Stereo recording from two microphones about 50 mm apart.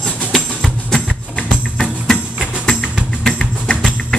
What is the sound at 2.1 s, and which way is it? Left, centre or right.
Music, right.